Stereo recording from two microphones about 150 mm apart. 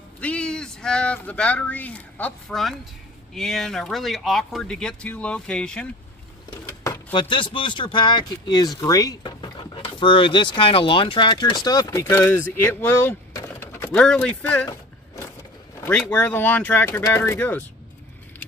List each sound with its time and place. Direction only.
0.2 s speech: 5° left (ahead or behind)
7.1 s speech: 30° left (ahead or behind)
13.9 s speech: 5° left (ahead or behind)
15.8 s speech: 15° left (ahead or behind)